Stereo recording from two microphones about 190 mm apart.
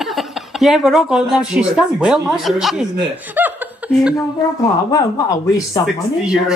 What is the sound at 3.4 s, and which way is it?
Chuckle, 10° right (ahead or behind).